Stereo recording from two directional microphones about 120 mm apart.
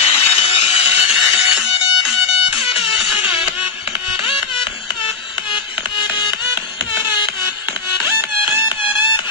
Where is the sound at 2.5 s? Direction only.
50° left (ahead or behind).